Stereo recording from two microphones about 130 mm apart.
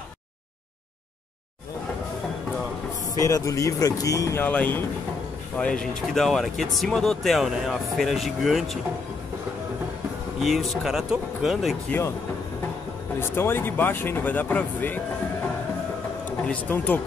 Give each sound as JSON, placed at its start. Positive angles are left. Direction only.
{"t": 3.2, "sound": "speech", "side_deg": 25}
{"t": 4.5, "sound": "speech", "side_deg": 10}
{"t": 10.4, "sound": "speech", "side_deg": 0}
{"t": 13.2, "sound": "speech", "side_deg": 15}
{"t": 16.4, "sound": "speech", "side_deg": 10}